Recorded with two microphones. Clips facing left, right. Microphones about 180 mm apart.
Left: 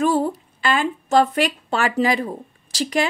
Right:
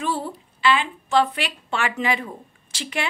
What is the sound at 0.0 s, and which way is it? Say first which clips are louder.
A woman's voice: left 8 dB; 45° left (ahead or behind).